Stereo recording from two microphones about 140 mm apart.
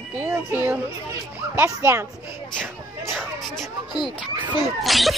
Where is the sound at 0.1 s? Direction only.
15° right (ahead or behind).